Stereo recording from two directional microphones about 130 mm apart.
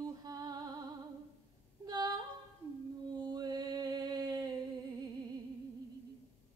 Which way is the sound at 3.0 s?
30° right (ahead or behind).